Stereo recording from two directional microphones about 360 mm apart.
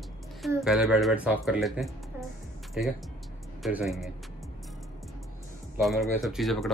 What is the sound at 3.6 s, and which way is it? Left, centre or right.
Speech, centre.